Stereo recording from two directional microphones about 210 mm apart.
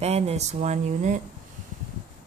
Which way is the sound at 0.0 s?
30° right (ahead or behind).